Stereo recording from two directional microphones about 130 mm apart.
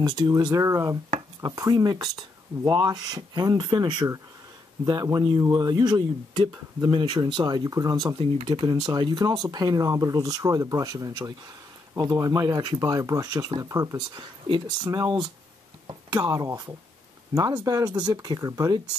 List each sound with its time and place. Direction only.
0.0 s speech: 30° right (ahead or behind)